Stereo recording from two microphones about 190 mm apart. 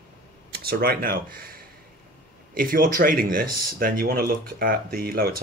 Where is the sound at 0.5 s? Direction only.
55° right (ahead or behind).